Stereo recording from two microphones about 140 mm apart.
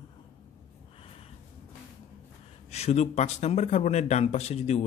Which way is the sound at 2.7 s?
50° left (ahead or behind).